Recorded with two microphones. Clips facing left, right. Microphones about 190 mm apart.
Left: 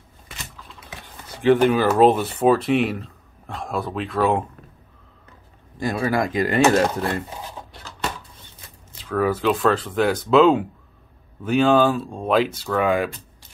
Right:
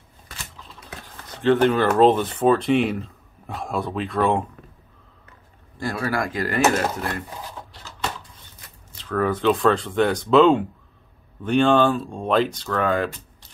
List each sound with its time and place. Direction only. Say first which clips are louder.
1.3 s speech: left 1 dB; 10° left (ahead or behind)
5.8 s speech: left 3 dB; 15° left (ahead or behind)
9.1 s speech: even; 5° left (ahead or behind)